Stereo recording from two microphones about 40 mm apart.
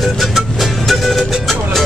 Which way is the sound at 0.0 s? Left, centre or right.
Centre.